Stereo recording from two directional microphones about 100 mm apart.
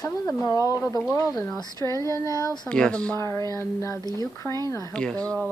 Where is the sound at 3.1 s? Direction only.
25° left (ahead or behind).